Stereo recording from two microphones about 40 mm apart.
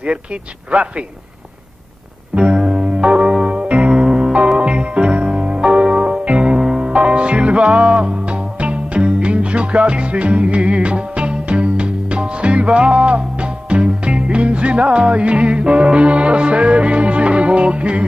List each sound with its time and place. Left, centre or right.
0.0 s speech: right
2.3 s music: right